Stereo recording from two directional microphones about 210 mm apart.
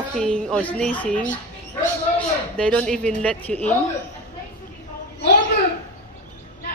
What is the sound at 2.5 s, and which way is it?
A woman's voice, 5° left (ahead or behind).